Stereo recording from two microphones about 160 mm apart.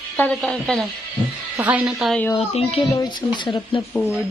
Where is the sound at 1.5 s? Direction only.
10° right (ahead or behind).